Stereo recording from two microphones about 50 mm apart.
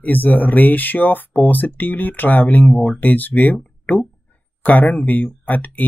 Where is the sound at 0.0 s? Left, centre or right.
Left.